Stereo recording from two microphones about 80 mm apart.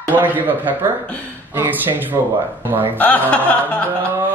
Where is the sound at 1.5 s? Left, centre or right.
Right.